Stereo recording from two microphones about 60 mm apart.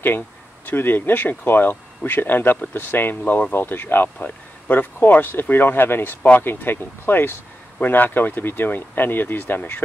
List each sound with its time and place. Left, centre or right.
0.7 s speech: left